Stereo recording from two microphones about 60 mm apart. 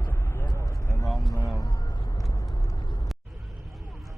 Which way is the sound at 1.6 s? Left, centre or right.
Left.